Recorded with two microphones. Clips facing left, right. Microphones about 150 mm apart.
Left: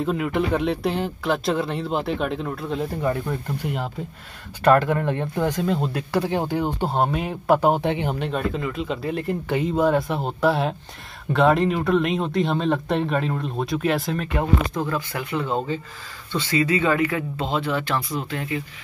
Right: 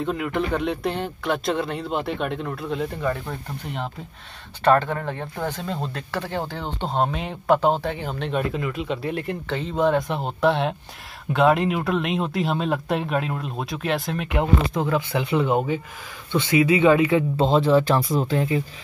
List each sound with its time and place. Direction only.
0.0 s speech: centre (ahead or behind); by 8.2 s 20° left (ahead or behind)
8.2 s speech: centre (ahead or behind)
9.5 s speech: 10° left (ahead or behind); by 14.4 s 5° right (ahead or behind)
14.8 s speech: 20° right (ahead or behind)
17.4 s speech: 35° right (ahead or behind)